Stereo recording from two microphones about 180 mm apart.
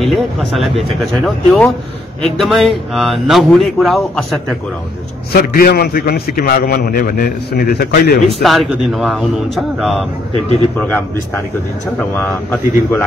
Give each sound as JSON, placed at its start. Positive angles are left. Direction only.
{"t": 0.0, "sound": "speech", "side_deg": 0}
{"t": 5.3, "sound": "a man's voice", "side_deg": 55}
{"t": 8.4, "sound": "speech", "side_deg": 0}
{"t": 10.3, "sound": "a man's voice", "side_deg": -30}
{"t": 12.0, "sound": "a man's voice", "side_deg": 10}